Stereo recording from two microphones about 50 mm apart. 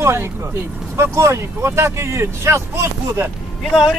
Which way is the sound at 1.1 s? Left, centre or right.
Right.